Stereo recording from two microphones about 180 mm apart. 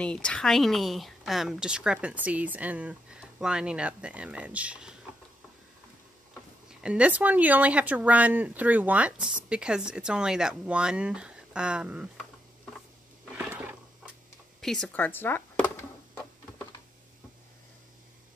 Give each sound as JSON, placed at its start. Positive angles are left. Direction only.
{"t": 0.0, "sound": "speech", "side_deg": 5}
{"t": 6.8, "sound": "speech", "side_deg": -5}
{"t": 13.5, "sound": "a sound", "side_deg": -10}
{"t": 14.6, "sound": "speech", "side_deg": 5}